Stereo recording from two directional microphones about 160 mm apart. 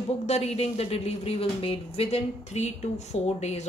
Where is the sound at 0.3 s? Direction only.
40° left (ahead or behind).